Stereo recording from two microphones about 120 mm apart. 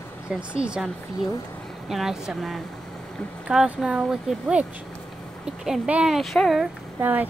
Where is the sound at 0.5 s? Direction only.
5° right (ahead or behind).